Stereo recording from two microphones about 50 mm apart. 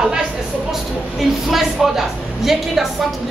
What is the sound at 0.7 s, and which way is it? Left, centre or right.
A woman's voice, centre.